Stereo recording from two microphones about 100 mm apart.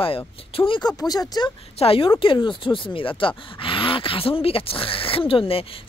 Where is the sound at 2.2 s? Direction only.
55° left (ahead or behind).